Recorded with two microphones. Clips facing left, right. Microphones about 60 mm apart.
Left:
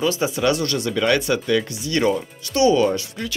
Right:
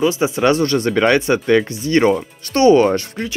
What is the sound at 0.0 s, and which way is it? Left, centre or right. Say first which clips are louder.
Speech: right 4 dB; right.